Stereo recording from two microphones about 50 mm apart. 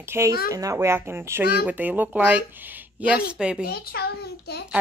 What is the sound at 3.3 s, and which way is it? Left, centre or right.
Speech, centre.